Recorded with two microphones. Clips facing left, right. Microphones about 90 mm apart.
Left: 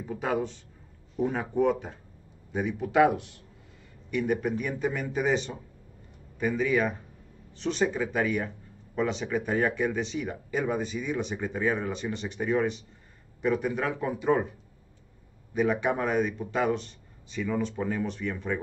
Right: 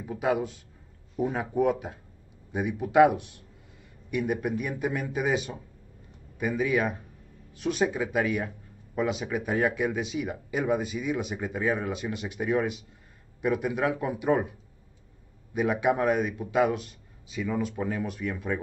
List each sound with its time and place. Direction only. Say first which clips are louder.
0.0 s speech: right 2 dB; 5° right (ahead or behind)
15.5 s speech: right 1 dB; 10° right (ahead or behind)